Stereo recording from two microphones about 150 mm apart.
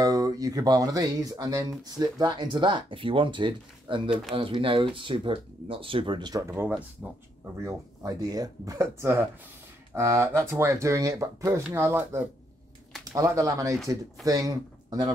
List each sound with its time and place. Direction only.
0.0 s speech: 25° right (ahead or behind)
4.1 s speech: centre (ahead or behind)
4.4 s speech: 35° right (ahead or behind); by 7.2 s 10° right (ahead or behind)
7.6 s speech: 25° right (ahead or behind)
9.9 s speech: 15° right (ahead or behind)